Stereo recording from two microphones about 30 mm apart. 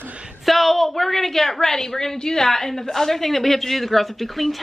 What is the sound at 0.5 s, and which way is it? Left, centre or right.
A woman's voice, centre.